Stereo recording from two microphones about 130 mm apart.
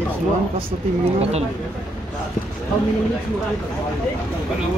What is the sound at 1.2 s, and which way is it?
Speech, 55° right (ahead or behind).